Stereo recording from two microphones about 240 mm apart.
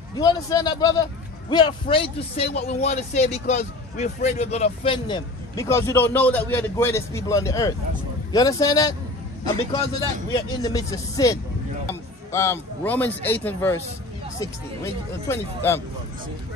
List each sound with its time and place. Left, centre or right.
0.1 s a man's voice: centre